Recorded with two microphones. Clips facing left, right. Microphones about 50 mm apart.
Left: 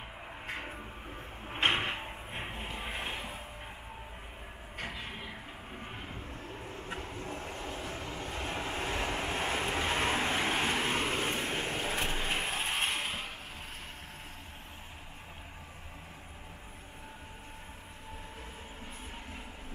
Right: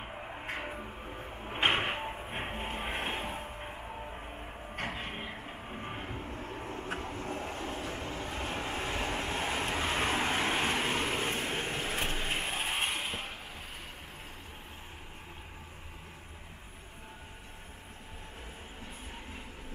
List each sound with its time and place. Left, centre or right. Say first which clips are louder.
0.1 s music: right 2 dB; centre
4.7 s a sound: right 3 dB; right
5.8 s vehicle: right 4 dB; centre
6.6 s vehicle: right 3 dB; right
7.1 s train: right 3 dB; centre
8.2 s vehicle: left 1 dB; centre